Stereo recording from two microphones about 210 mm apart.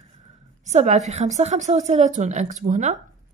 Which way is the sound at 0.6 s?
35° right (ahead or behind).